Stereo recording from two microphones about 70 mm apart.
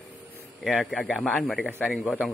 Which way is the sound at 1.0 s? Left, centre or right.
Centre.